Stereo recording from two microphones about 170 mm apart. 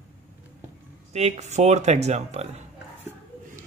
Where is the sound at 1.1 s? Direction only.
40° right (ahead or behind).